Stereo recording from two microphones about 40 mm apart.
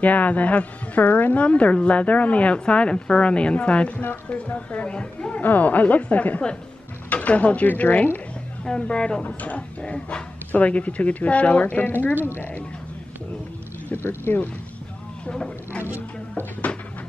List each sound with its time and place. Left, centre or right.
0.0 s a woman's voice: left
5.4 s speech: left
8.6 s speech: left
9.2 s a woman's voice: left
13.9 s speech: left